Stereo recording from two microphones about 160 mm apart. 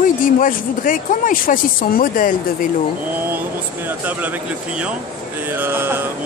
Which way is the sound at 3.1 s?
10° right (ahead or behind).